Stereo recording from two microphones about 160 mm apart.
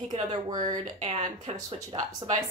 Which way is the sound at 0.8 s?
45° right (ahead or behind).